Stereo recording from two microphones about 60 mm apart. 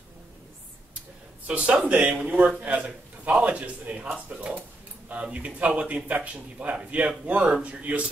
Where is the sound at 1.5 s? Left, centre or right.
Centre.